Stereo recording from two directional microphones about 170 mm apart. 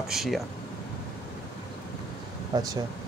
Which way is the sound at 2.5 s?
25° right (ahead or behind).